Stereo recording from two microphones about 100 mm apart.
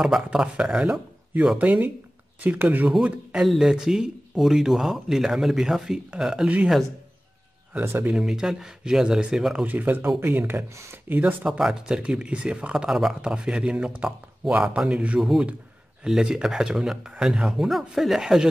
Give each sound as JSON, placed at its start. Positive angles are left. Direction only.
{"t": 0.0, "sound": "speech", "side_deg": -5}
{"t": 1.6, "sound": "speech", "side_deg": -15}
{"t": 7.8, "sound": "speech", "side_deg": -25}
{"t": 8.1, "sound": "speech", "side_deg": -5}
{"t": 9.7, "sound": "speech", "side_deg": -15}
{"t": 11.4, "sound": "speech", "side_deg": -5}